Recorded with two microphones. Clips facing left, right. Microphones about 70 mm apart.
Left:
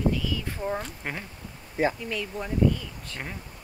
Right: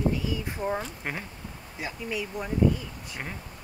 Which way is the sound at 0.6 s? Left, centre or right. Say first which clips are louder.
Right 2 dB; centre.